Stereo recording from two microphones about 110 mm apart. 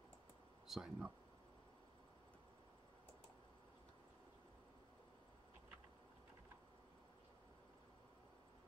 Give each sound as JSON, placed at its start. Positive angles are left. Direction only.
{"t": 0.7, "sound": "speech", "side_deg": -5}